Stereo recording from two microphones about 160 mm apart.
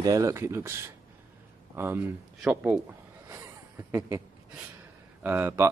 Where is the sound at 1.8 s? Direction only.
15° right (ahead or behind).